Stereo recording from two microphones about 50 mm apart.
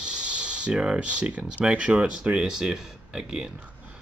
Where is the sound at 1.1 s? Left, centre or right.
Right.